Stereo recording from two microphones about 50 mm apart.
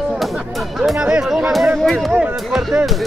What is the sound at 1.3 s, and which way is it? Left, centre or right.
Speech, centre.